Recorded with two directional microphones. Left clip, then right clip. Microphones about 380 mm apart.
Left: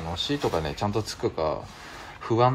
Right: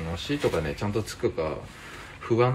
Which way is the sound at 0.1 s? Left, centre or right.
Centre.